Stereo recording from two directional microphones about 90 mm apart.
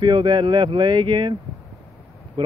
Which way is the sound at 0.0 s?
65° right (ahead or behind).